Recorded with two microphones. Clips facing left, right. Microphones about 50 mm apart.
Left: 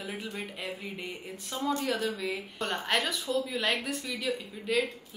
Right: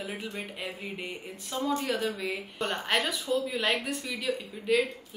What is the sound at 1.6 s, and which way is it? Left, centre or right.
Speech, centre.